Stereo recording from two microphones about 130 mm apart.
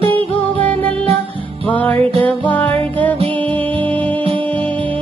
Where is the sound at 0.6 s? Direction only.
10° left (ahead or behind).